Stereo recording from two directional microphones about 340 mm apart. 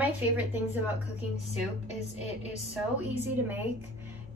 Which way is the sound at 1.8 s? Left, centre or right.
Centre.